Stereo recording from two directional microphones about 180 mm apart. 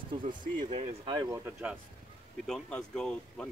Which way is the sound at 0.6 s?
40° right (ahead or behind).